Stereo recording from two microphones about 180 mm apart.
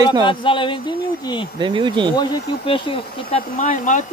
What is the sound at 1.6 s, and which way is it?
Speech, 25° right (ahead or behind).